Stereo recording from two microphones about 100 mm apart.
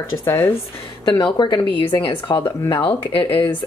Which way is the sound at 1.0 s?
45° left (ahead or behind).